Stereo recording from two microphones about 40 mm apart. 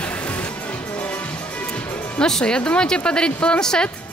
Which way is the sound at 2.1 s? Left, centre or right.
Centre.